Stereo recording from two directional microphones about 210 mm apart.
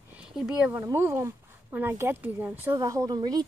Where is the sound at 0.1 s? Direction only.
5° right (ahead or behind).